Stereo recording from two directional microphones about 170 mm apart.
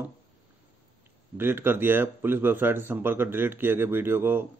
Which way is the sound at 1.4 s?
10° right (ahead or behind).